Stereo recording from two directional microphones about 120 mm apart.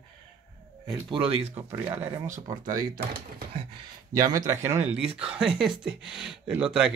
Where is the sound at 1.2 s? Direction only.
60° right (ahead or behind).